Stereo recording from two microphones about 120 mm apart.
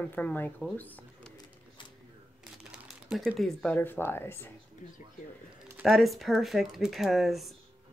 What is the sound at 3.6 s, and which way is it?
Speech, 15° left (ahead or behind).